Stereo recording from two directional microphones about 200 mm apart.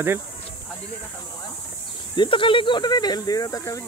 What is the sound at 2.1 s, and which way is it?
Speech, 25° left (ahead or behind).